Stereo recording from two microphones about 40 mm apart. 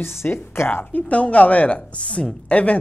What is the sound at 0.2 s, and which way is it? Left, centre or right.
Speech, left.